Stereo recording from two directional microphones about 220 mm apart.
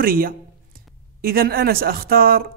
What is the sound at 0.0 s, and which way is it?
Speech, 40° right (ahead or behind).